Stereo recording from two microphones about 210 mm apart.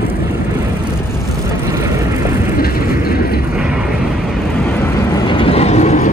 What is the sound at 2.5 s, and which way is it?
Vehicle, 45° left (ahead or behind).